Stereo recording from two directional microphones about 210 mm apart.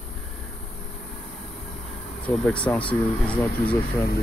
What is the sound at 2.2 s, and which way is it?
Speech, 5° left (ahead or behind).